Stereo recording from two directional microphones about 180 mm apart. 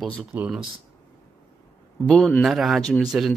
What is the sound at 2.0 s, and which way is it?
Speech, centre (ahead or behind).